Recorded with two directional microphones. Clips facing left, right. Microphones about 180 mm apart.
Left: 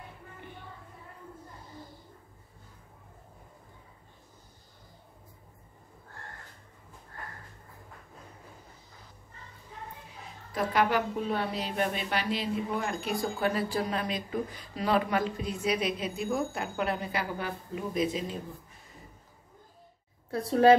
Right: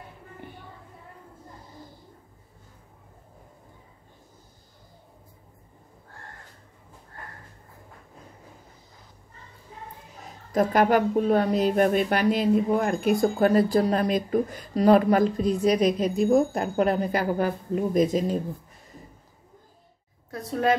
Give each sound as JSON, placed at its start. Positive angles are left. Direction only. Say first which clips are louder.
{"t": 10.5, "sound": "speech", "louder": "right 7 dB", "side_deg": -45}
{"t": 20.2, "sound": "a woman's voice", "louder": "left 4 dB", "side_deg": 30}